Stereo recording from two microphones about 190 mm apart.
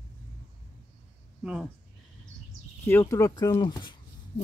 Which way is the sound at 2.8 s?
15° left (ahead or behind).